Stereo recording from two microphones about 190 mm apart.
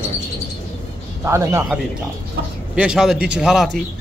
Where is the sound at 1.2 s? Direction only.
15° right (ahead or behind).